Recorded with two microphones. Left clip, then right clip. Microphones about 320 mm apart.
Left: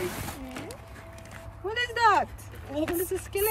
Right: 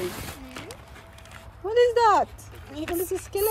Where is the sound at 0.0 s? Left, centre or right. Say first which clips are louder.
Right 1 dB; centre.